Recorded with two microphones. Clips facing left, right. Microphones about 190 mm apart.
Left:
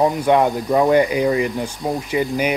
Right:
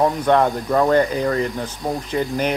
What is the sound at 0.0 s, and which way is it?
Speech, 10° left (ahead or behind).